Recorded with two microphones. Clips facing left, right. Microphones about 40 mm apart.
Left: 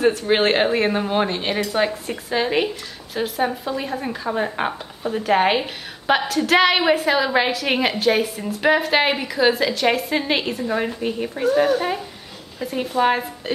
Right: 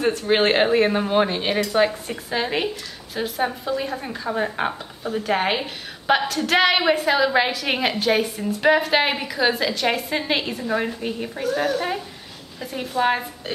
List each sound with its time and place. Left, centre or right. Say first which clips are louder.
0.0 s speech: left 2 dB; centre
12.5 s speech: left 3 dB; centre